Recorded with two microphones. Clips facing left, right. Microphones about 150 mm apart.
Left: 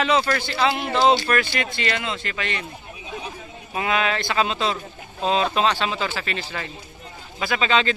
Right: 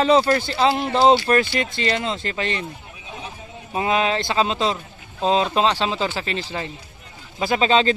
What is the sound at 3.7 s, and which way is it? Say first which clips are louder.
Speech: right 3 dB; 30° right (ahead or behind).